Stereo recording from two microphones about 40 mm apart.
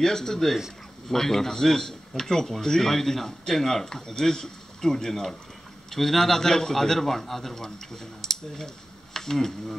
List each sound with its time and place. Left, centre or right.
0.0 s speech: centre